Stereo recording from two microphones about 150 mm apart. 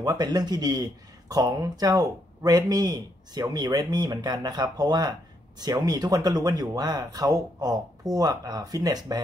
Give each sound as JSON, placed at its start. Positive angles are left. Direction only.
{"t": 0.0, "sound": "speech", "side_deg": -25}